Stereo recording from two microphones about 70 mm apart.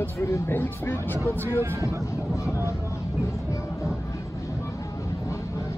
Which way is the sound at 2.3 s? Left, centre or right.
Left.